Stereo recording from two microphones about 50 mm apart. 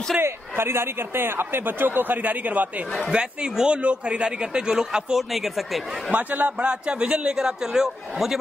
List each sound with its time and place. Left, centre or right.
0.2 s speech: right
3.1 s a man's voice: centre
6.1 s a man's voice: right; by 8.4 s centre